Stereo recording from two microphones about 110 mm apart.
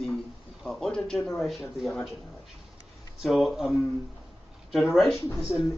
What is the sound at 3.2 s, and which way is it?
Speech, centre (ahead or behind).